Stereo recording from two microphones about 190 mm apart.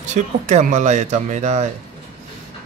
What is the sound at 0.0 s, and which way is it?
Speech, 40° right (ahead or behind).